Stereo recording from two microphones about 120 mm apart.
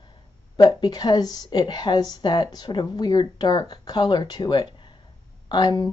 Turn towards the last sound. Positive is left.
turn(degrees=35)  # may be behind; listen again after turning